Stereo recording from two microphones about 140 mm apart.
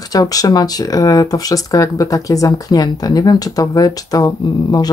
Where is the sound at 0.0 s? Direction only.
25° left (ahead or behind).